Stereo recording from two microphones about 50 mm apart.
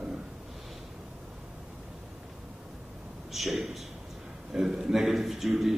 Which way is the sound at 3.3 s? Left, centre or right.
Centre.